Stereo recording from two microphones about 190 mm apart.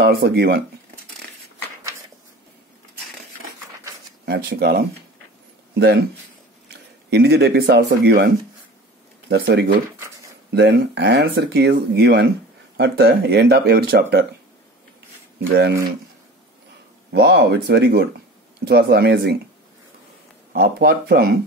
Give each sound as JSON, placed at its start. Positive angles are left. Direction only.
{"t": 0.0, "sound": "speech", "side_deg": -60}
{"t": 4.3, "sound": "speech", "side_deg": -60}
{"t": 9.3, "sound": "speech", "side_deg": -60}
{"t": 15.3, "sound": "speech", "side_deg": -60}
{"t": 17.1, "sound": "speech", "side_deg": -60}
{"t": 20.5, "sound": "speech", "side_deg": -55}